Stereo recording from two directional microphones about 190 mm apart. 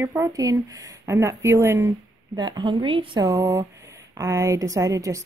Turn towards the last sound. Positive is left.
turn(degrees=-15)  # may be behind; listen again after turning